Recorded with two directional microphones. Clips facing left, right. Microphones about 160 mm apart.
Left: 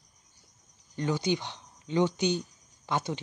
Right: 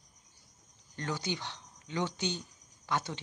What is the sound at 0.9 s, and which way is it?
Speech, 15° left (ahead or behind).